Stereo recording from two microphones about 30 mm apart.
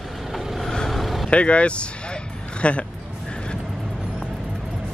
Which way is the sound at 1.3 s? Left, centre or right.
Left.